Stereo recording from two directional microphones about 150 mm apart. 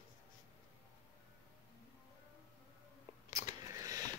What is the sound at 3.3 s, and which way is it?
Scissors, 20° right (ahead or behind).